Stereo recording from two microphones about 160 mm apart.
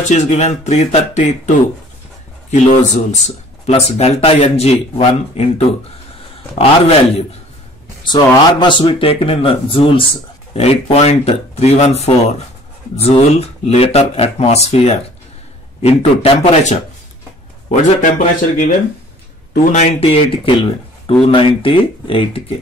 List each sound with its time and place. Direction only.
0.1 s speech: 45° left (ahead or behind)
2.5 s speech: 45° left (ahead or behind)
6.6 s speech: 35° left (ahead or behind)
17.6 s speech: 55° left (ahead or behind); by 22.4 s 35° left (ahead or behind)